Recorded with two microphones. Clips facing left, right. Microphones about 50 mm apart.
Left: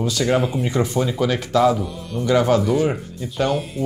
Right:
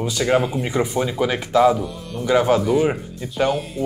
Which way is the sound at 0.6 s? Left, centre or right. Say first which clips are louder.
Even; centre.